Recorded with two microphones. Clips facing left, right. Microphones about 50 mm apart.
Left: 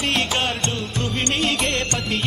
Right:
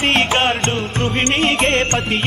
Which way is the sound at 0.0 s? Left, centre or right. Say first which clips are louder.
Right 6 dB; right.